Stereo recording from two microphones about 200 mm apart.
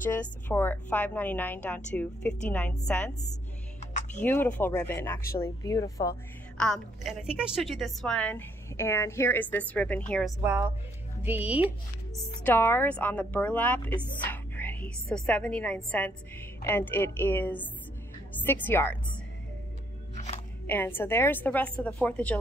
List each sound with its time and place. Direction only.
0.0 s a woman's voice: 10° left (ahead or behind)
4.2 s a woman's voice: 10° left (ahead or behind)
6.6 s a woman's voice: centre (ahead or behind)
10.4 s speech: 10° right (ahead or behind)
12.4 s a woman's voice: 10° left (ahead or behind)
20.6 s a woman's voice: 10° left (ahead or behind)